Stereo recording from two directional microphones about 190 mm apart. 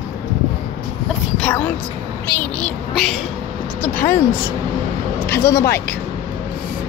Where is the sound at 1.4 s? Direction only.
10° left (ahead or behind).